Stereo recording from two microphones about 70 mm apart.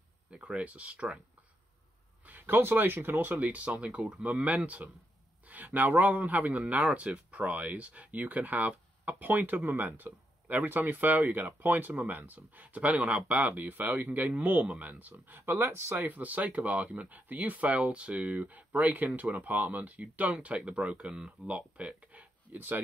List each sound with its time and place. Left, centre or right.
0.3 s speech: centre
2.2 s speech: right